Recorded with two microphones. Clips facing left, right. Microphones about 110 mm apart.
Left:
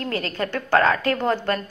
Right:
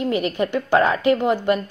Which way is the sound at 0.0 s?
15° right (ahead or behind).